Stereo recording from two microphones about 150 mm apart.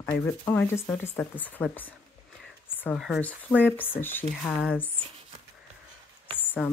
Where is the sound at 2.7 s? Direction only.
15° left (ahead or behind).